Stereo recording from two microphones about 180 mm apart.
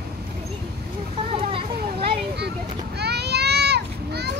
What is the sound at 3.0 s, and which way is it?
Children playing, 65° right (ahead or behind).